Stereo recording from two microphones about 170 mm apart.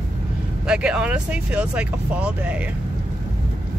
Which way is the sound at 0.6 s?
5° right (ahead or behind).